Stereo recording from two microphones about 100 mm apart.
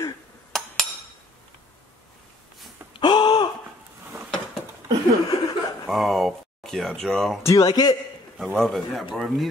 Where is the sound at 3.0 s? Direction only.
50° left (ahead or behind).